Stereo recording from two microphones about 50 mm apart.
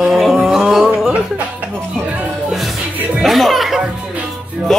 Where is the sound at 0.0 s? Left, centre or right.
Centre.